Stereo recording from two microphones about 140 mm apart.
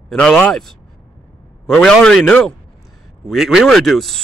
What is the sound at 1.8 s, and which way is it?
Speech, 5° left (ahead or behind).